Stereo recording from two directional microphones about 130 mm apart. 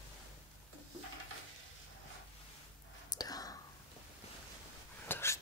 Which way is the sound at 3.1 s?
30° left (ahead or behind).